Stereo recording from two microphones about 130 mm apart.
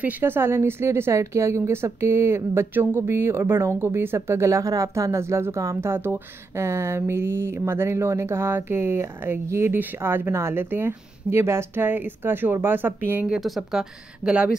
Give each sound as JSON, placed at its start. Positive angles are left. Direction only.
{"t": 0.0, "sound": "a woman's voice", "side_deg": -15}